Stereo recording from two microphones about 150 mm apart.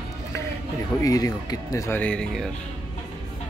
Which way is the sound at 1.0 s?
25° left (ahead or behind).